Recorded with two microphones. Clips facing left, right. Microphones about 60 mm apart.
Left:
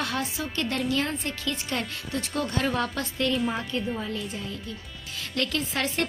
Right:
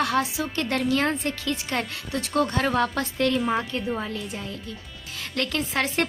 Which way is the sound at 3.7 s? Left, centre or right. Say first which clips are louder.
Even; right.